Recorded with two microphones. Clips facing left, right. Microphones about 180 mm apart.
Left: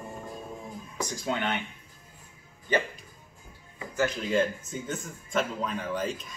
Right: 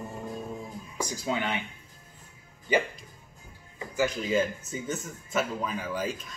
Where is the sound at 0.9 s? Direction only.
10° right (ahead or behind).